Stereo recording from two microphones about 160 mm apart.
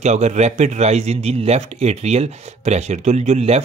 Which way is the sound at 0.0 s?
45° right (ahead or behind).